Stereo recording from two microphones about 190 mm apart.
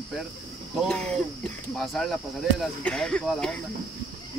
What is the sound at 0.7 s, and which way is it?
Speech, 5° left (ahead or behind).